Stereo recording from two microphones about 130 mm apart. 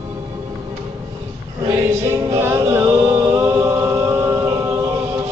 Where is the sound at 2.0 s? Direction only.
20° right (ahead or behind).